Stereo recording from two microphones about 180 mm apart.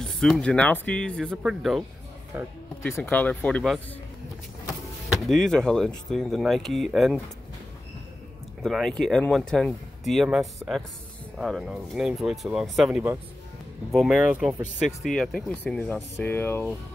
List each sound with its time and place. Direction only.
0.0 s speech: centre (ahead or behind)
2.8 s speech: 10° left (ahead or behind)
5.2 s speech: centre (ahead or behind)
8.6 s speech: centre (ahead or behind)